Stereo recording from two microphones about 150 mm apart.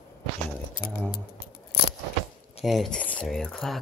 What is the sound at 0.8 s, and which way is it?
Speech, 70° left (ahead or behind).